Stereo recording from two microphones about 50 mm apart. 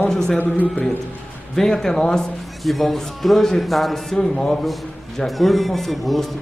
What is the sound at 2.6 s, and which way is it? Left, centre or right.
A man's voice, centre.